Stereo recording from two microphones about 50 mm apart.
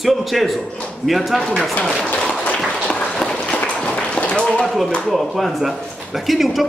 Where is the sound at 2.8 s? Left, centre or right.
Left.